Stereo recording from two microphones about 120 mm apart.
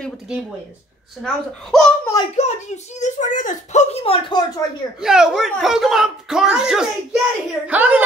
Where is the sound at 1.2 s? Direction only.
5° left (ahead or behind).